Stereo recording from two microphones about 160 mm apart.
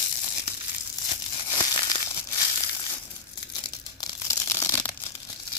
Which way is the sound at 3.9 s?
20° left (ahead or behind).